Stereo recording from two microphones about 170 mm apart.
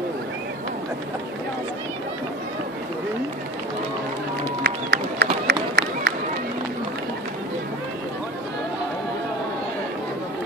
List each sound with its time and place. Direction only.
4.6 s run: 70° right (ahead or behind)